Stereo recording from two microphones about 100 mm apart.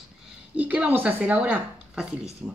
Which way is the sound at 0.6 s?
15° right (ahead or behind).